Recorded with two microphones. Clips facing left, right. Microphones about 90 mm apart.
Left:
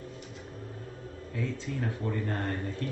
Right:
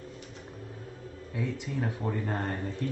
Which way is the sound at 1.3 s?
15° right (ahead or behind).